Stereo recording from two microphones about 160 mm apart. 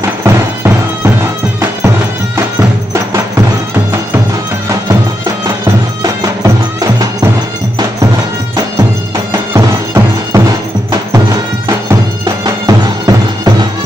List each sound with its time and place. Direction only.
0.2 s music: 15° right (ahead or behind)
6.4 s music: 25° right (ahead or behind)
9.5 s music: 15° right (ahead or behind)
12.6 s music: 25° right (ahead or behind)